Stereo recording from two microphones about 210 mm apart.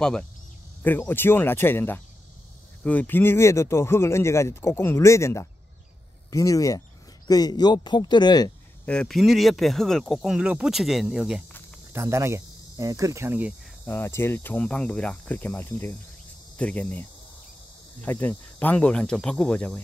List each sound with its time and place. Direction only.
0.8 s speech: 10° left (ahead or behind)
8.8 s speech: 5° left (ahead or behind)
13.8 s speech: 10° left (ahead or behind)
18.0 s speech: 10° left (ahead or behind)